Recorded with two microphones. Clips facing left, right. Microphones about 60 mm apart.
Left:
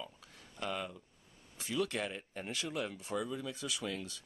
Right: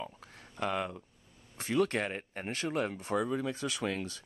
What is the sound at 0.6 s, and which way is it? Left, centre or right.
Speech, right.